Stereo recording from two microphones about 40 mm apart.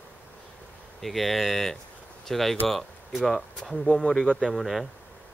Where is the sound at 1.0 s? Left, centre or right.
Centre.